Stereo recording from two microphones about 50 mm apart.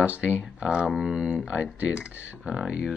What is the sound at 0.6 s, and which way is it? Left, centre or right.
Speech, centre.